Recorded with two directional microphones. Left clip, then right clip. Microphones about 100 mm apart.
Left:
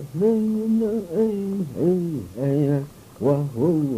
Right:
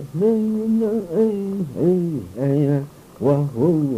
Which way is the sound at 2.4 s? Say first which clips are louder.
Right 2 dB; 35° right (ahead or behind).